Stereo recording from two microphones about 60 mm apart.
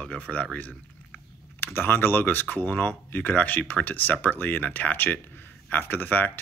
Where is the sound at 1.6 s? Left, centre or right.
Left.